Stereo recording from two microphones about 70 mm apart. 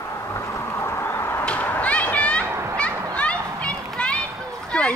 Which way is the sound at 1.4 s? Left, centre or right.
Left.